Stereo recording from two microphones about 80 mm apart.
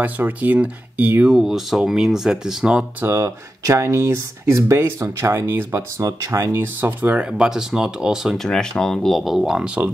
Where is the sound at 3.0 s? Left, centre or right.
Right.